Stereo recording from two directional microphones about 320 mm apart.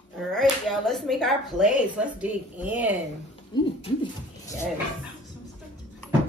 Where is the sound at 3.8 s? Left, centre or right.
Centre.